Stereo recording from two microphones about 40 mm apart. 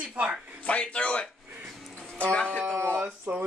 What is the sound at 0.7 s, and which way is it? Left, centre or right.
Speech, left.